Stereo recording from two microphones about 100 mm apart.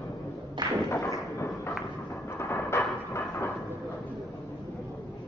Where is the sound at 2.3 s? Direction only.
25° left (ahead or behind).